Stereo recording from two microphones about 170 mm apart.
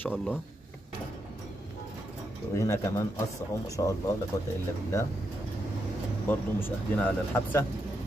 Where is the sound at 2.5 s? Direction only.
20° left (ahead or behind).